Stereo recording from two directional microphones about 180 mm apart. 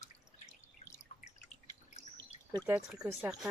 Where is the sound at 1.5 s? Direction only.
40° left (ahead or behind).